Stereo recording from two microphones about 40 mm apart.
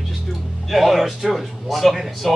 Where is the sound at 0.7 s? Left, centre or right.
Centre.